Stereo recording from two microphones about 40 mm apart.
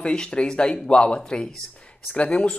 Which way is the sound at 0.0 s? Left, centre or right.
Left.